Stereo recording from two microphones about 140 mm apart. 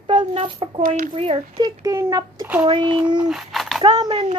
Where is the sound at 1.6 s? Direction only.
25° right (ahead or behind).